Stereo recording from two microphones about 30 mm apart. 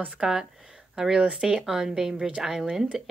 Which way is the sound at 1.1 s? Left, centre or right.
Right.